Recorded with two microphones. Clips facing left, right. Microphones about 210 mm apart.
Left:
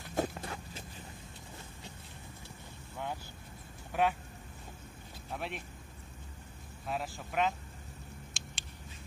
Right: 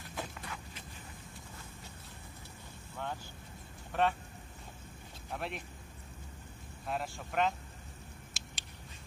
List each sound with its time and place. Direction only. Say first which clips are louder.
0.1 s clip-clop: left 9 dB; 45° left (ahead or behind)
3.9 s speech: left 1 dB; 10° left (ahead or behind)
5.3 s speech: even; centre (ahead or behind)
6.9 s speech: even; centre (ahead or behind)
8.3 s a sound: left 2 dB; centre (ahead or behind)